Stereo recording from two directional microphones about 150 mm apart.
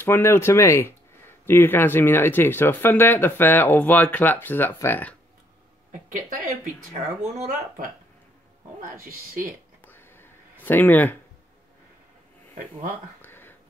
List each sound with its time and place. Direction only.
0.0 s speech: 15° left (ahead or behind)
5.9 s speech: 60° right (ahead or behind)
9.8 s whispering: 15° left (ahead or behind)
10.6 s speech: 10° left (ahead or behind)
13.2 s a sound: 15° left (ahead or behind)